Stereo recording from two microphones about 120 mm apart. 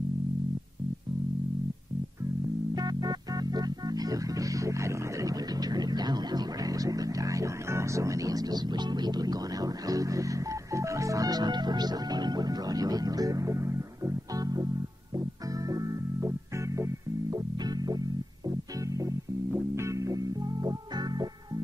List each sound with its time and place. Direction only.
2.7 s music: 35° right (ahead or behind)